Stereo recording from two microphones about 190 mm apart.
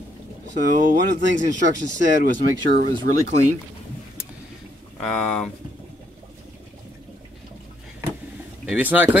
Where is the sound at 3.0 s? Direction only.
60° right (ahead or behind).